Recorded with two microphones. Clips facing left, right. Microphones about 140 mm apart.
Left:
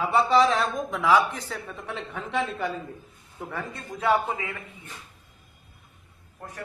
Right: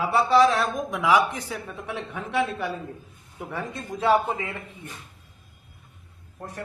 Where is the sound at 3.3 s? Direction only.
15° right (ahead or behind); by 4.6 s 30° right (ahead or behind).